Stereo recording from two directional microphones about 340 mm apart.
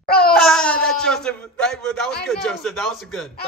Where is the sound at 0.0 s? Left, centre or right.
Left.